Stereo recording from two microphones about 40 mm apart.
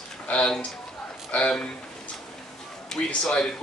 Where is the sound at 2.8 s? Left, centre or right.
Centre.